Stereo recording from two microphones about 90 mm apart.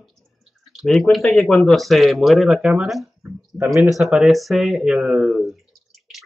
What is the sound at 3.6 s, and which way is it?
Speech, 35° right (ahead or behind).